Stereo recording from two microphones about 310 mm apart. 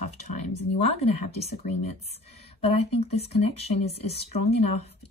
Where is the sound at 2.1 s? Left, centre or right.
Centre.